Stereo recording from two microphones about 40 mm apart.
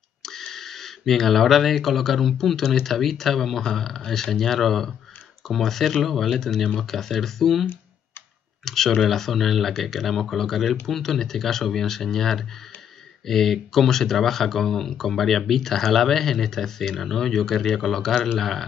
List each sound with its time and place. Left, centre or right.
0.2 s speech: centre
8.6 s speech: centre